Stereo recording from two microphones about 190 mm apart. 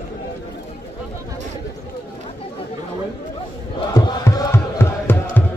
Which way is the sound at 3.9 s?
20° left (ahead or behind).